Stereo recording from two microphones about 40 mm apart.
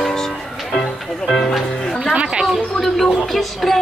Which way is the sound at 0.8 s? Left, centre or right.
Centre.